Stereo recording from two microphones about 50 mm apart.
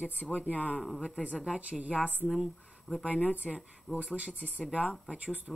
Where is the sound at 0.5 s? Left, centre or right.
Right.